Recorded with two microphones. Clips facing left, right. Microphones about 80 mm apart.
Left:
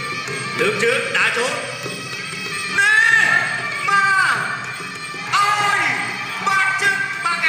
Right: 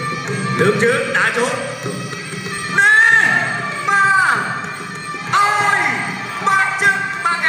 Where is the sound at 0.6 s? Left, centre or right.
Right.